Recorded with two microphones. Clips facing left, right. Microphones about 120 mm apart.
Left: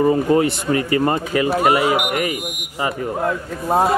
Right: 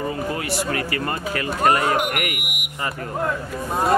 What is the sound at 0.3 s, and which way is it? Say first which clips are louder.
Speech: left 8 dB; 25° left (ahead or behind).